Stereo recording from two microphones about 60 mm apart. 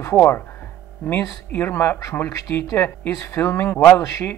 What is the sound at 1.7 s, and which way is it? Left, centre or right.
Speech, left.